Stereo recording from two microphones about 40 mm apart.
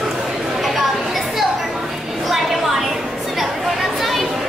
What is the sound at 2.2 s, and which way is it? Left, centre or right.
Chatter, centre.